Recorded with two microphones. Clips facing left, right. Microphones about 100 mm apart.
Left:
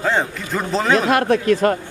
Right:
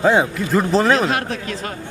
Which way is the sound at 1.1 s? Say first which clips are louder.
Left 8 dB; 55° left (ahead or behind).